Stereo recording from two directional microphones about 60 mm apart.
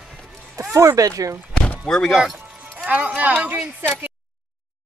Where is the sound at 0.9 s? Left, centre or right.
Right.